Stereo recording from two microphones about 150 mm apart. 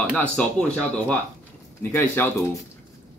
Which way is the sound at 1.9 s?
15° left (ahead or behind).